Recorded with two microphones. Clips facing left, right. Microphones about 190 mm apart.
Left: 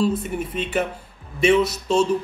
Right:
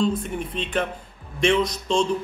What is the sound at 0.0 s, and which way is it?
A man's voice, 5° left (ahead or behind).